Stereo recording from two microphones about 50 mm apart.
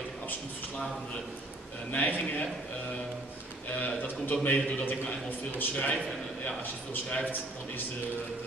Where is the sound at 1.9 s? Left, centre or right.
Left.